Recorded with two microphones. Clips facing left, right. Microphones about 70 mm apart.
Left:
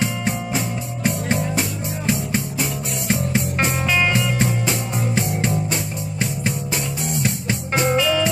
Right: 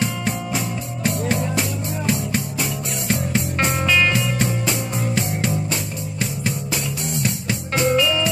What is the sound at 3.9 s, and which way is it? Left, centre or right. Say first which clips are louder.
Music: right 2 dB; centre.